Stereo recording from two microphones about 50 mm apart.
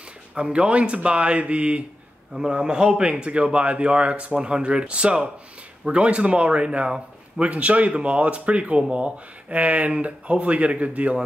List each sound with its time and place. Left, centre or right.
0.3 s a man's voice: centre